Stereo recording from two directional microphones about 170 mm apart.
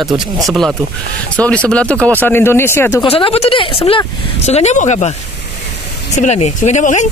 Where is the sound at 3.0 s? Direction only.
30° left (ahead or behind).